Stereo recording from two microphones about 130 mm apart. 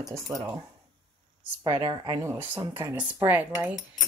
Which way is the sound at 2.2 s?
15° right (ahead or behind).